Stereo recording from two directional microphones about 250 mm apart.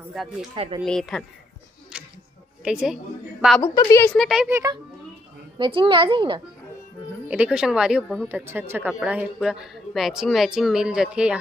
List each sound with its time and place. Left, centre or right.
0.1 s a woman's voice: centre
0.6 s a woman's voice: right
0.8 s a woman's voice: centre
1.9 s music: centre
2.6 s a woman's voice: centre
3.6 s a woman's voice: centre
7.2 s a woman's voice: centre